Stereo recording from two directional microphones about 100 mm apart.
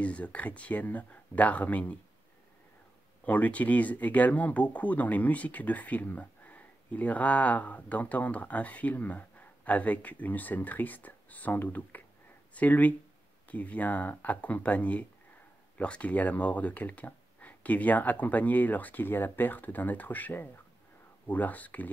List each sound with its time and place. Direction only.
0.0 s speech: 15° left (ahead or behind)
3.3 s speech: 15° left (ahead or behind)